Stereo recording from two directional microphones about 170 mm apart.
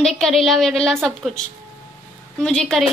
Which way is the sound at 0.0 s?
5° left (ahead or behind).